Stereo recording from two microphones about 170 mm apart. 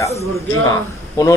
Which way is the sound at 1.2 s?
20° left (ahead or behind).